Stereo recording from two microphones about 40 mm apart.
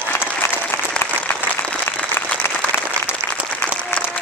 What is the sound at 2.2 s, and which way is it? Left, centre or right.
Applause, left.